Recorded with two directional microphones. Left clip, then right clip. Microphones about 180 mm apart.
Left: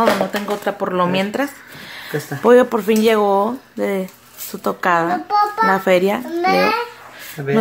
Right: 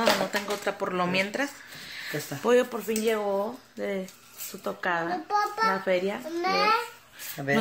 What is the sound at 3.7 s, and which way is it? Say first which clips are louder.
Speech: left 11 dB; 35° left (ahead or behind).